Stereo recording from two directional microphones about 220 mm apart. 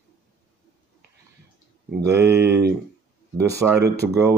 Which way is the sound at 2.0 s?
10° right (ahead or behind).